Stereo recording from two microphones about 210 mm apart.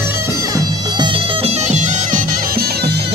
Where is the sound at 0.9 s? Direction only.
30° right (ahead or behind).